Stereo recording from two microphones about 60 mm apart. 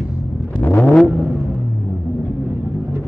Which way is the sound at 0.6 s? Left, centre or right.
Left.